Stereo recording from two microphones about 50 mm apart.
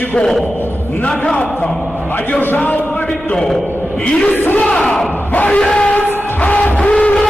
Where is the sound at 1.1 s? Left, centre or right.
Centre.